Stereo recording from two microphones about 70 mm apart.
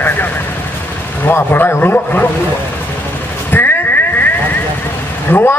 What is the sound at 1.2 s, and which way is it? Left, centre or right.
Speech, left.